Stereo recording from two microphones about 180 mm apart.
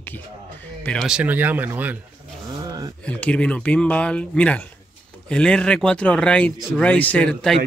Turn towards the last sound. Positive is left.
turn(degrees=5)  # may be behind; listen again after turning